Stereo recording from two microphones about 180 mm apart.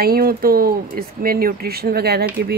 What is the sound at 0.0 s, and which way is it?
Speech, 55° right (ahead or behind).